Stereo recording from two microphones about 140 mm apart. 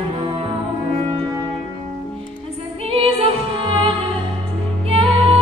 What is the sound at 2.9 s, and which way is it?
Music, 45° right (ahead or behind).